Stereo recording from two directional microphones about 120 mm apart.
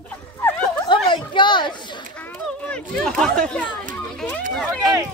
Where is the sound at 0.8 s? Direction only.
40° left (ahead or behind).